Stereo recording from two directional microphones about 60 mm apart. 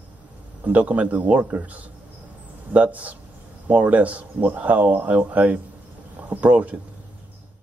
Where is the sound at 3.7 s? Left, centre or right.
Right.